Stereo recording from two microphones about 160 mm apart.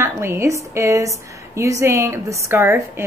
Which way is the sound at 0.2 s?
15° right (ahead or behind).